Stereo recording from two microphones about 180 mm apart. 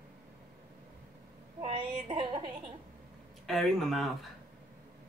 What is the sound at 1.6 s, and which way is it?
Speech, 30° right (ahead or behind).